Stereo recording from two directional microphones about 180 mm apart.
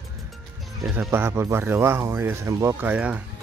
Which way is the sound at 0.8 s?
10° right (ahead or behind).